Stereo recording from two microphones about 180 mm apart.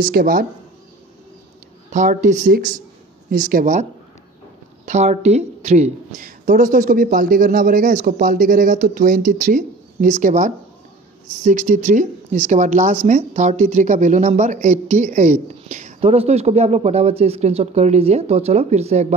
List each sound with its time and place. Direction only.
0.0 s a woman's voice: 50° right (ahead or behind)
1.9 s a woman's voice: 45° right (ahead or behind)
4.8 s a woman's voice: 40° right (ahead or behind)